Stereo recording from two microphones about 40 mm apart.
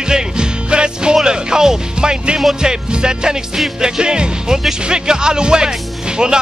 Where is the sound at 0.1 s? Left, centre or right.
Right.